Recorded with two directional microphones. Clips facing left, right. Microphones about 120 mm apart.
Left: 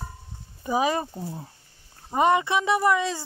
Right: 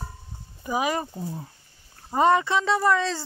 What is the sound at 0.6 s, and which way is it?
Speech, 25° left (ahead or behind).